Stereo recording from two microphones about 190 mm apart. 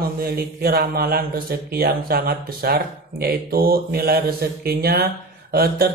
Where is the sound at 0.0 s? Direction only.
50° right (ahead or behind).